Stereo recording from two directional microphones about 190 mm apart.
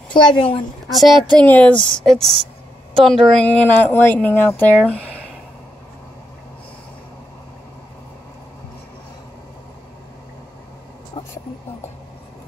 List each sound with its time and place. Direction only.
0.1 s a woman's voice: 25° left (ahead or behind)
0.9 s a woman's voice: centre (ahead or behind)
11.2 s a sound: 25° left (ahead or behind)